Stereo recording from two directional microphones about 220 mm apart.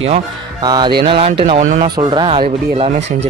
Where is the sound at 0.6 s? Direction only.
20° right (ahead or behind).